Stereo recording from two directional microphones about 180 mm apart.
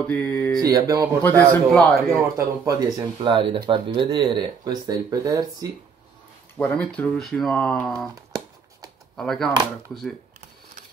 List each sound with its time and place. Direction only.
0.0 s a man's voice: 10° left (ahead or behind)
0.6 s speech: 20° right (ahead or behind)
1.2 s a man's voice: 10° left (ahead or behind)
2.3 s speech: 20° right (ahead or behind)
6.6 s speech: 5° left (ahead or behind)
9.1 s speech: centre (ahead or behind)